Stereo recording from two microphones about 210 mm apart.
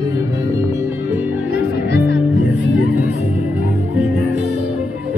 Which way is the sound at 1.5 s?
55° left (ahead or behind).